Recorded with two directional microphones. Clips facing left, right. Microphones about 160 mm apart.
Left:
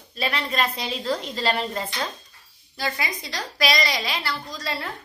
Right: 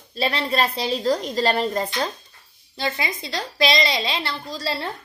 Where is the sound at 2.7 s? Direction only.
25° right (ahead or behind).